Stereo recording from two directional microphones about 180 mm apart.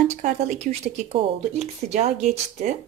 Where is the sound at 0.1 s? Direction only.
45° right (ahead or behind).